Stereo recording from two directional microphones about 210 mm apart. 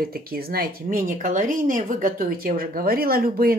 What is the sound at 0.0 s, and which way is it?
Speech, 45° right (ahead or behind).